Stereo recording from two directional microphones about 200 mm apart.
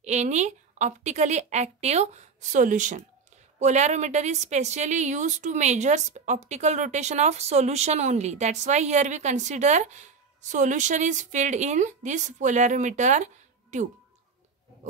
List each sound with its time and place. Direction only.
0.0 s a woman's voice: 35° right (ahead or behind)